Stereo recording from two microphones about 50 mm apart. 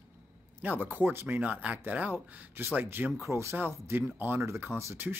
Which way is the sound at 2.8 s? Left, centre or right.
Right.